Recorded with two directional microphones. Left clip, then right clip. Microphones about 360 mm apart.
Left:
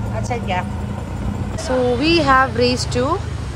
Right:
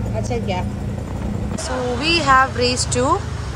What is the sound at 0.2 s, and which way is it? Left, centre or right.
Speech, centre.